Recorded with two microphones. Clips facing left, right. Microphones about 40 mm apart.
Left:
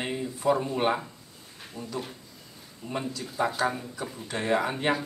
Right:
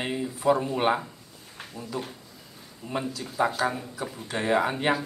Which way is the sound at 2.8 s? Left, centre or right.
Centre.